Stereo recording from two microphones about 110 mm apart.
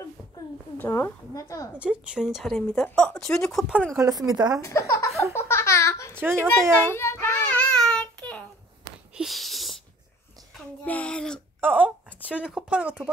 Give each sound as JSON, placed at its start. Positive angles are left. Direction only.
{"t": 0.7, "sound": "a woman's voice", "side_deg": 25}
{"t": 1.7, "sound": "speech", "side_deg": -10}
{"t": 3.9, "sound": "speech", "side_deg": -30}
{"t": 4.6, "sound": "a woman's voice", "side_deg": 30}
{"t": 5.3, "sound": "a sound", "side_deg": 25}
{"t": 6.1, "sound": "a child's voice", "side_deg": -20}
{"t": 6.9, "sound": "child singing", "side_deg": 25}
{"t": 7.5, "sound": "child singing", "side_deg": 5}
{"t": 9.1, "sound": "wheeze", "side_deg": 0}
{"t": 10.8, "sound": "speech", "side_deg": 15}
{"t": 11.6, "sound": "speech", "side_deg": -15}